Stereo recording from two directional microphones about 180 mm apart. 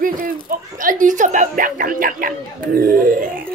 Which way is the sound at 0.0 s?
50° right (ahead or behind).